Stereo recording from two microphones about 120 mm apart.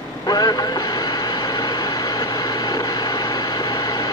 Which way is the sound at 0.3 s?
35° left (ahead or behind).